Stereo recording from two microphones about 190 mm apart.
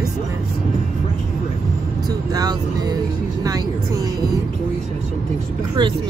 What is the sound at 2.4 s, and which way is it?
A woman's voice, 20° right (ahead or behind).